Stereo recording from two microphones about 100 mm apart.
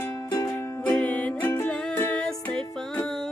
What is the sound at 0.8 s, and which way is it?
Music, 15° left (ahead or behind).